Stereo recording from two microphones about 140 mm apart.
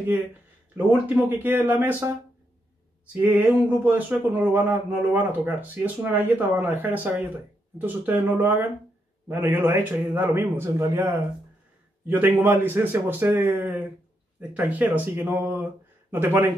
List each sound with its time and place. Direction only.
0.7 s a man's voice: 10° right (ahead or behind)